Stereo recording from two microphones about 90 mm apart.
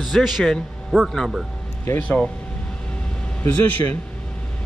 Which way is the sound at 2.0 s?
10° left (ahead or behind).